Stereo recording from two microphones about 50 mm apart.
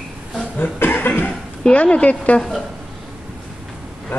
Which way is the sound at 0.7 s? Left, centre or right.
Left.